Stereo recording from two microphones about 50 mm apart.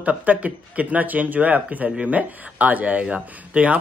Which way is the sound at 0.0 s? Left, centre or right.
Right.